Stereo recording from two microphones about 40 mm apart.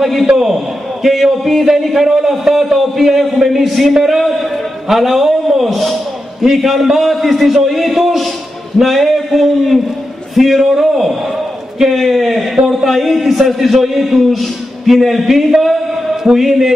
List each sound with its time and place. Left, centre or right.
0.0 s a man's voice: centre